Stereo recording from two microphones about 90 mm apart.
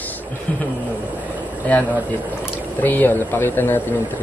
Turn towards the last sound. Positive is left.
turn(degrees=20)  # may be behind; listen again after turning